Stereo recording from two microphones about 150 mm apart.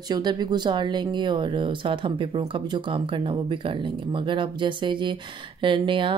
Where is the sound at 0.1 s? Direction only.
30° right (ahead or behind).